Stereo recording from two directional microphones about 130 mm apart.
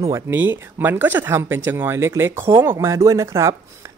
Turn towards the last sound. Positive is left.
turn(degrees=-20)  # may be behind; listen again after turning